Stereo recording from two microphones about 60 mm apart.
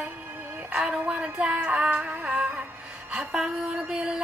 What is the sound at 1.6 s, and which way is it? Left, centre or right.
Music, right.